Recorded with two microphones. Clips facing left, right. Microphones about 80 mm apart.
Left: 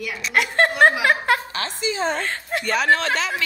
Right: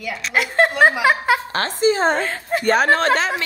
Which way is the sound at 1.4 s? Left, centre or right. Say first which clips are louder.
Right 8 dB; right.